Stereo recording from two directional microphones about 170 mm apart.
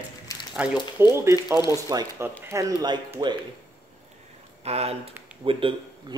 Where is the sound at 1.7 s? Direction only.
20° right (ahead or behind).